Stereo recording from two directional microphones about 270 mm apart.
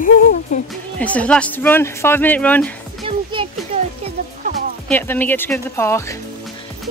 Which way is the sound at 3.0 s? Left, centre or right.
Centre.